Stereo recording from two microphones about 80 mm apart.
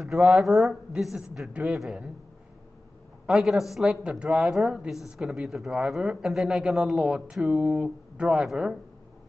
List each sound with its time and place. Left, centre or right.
0.0 s speech: centre
1.5 s speech: centre
3.3 s speech: centre